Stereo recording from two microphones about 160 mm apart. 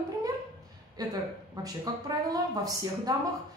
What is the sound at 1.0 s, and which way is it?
A woman's voice, 25° right (ahead or behind).